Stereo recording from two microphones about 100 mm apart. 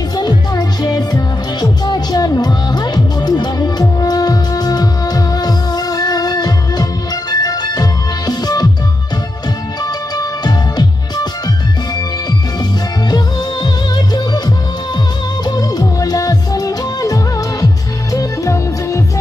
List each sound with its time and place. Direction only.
0.1 s music: 45° left (ahead or behind)
10.1 s music: 40° left (ahead or behind)
13.1 s music: 45° left (ahead or behind)